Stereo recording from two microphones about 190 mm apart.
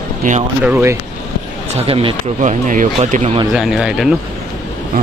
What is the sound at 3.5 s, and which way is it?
Speech, 5° right (ahead or behind).